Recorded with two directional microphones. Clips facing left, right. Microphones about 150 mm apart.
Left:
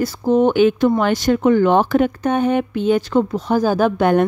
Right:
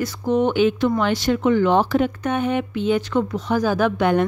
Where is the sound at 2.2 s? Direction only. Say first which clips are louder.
Left 4 dB; 40° left (ahead or behind).